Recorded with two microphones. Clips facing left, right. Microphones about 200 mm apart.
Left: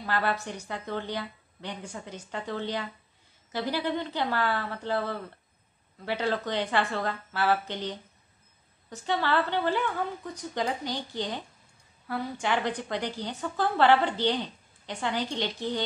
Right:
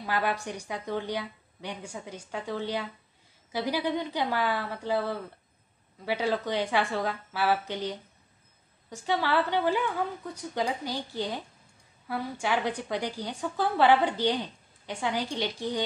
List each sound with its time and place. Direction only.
0.0 s a woman's voice: 10° right (ahead or behind)